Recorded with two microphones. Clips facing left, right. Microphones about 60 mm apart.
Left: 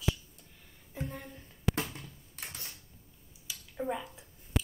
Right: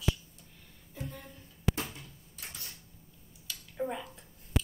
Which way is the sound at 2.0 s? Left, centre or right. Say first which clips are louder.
Left 2 dB; left.